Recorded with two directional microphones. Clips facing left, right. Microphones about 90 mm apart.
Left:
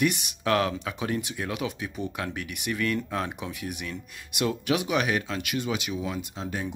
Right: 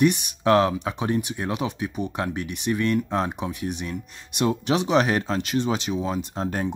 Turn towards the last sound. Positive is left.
turn(degrees=-45)  # may be behind; listen again after turning